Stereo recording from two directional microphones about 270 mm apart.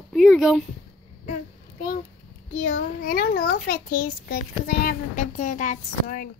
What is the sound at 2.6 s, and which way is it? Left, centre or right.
A child's voice, left.